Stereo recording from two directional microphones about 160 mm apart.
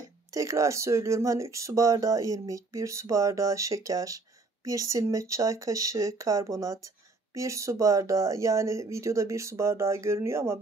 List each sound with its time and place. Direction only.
0.3 s speech: 20° right (ahead or behind)